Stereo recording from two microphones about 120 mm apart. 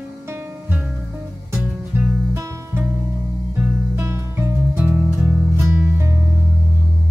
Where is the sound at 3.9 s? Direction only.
20° right (ahead or behind).